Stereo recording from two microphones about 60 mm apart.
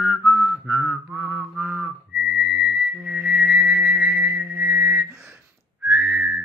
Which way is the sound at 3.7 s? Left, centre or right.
Right.